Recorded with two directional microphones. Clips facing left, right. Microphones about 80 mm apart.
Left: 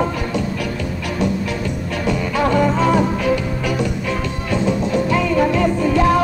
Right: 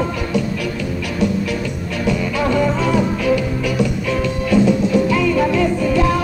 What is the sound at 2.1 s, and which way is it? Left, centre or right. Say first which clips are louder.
Music: even; left.